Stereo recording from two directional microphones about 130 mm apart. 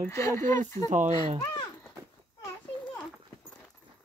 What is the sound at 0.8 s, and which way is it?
Speech, 70° right (ahead or behind).